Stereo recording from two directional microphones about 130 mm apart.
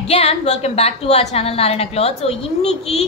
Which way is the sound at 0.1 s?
50° left (ahead or behind).